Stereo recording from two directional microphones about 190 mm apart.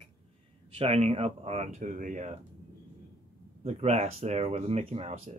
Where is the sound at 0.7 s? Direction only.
30° right (ahead or behind).